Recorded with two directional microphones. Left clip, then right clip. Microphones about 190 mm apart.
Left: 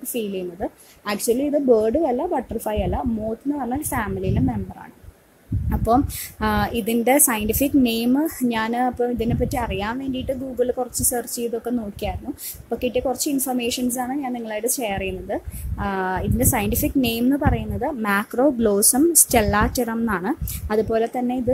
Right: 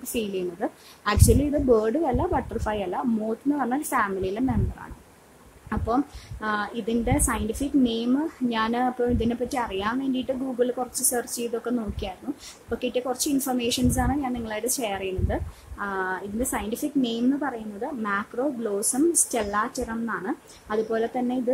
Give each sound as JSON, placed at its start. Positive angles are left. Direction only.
{"t": 0.1, "sound": "a woman's voice", "side_deg": 10}
{"t": 5.9, "sound": "a woman's voice", "side_deg": 30}